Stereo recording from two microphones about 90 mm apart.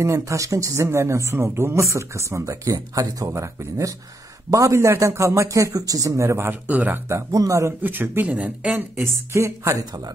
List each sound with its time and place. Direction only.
0.0 s speech: 35° right (ahead or behind)
6.7 s speech: 20° right (ahead or behind)
7.1 s speech: 35° right (ahead or behind)
7.8 s speech: 25° right (ahead or behind)
8.9 s speech: 30° right (ahead or behind)